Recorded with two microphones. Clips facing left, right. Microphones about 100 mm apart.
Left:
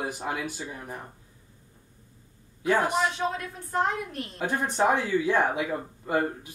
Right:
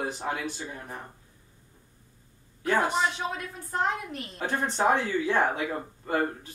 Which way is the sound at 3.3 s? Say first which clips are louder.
Left 3 dB; 5° right (ahead or behind).